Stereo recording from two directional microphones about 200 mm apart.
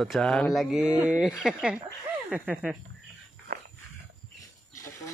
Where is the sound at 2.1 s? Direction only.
5° right (ahead or behind).